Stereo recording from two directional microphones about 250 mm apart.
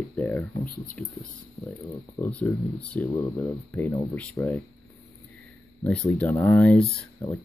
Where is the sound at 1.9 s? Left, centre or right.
Centre.